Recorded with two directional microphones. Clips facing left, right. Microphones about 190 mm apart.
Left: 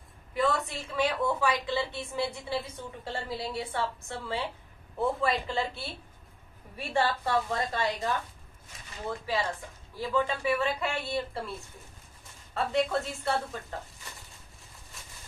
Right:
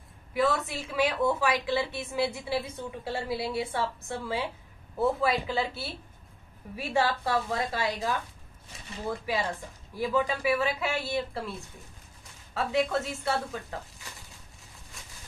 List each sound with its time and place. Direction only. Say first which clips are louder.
0.3 s a woman's voice: right 2 dB; centre (ahead or behind)
9.2 s a woman's voice: right 1 dB; 10° right (ahead or behind)
12.5 s speech: right 1 dB; centre (ahead or behind)